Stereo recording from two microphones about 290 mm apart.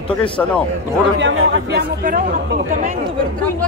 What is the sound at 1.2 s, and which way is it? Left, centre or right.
Speech, right.